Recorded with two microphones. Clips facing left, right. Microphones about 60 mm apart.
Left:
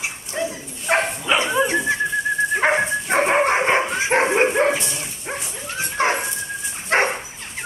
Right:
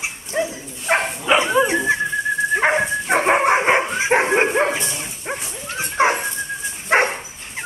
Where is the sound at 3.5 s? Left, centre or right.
Centre.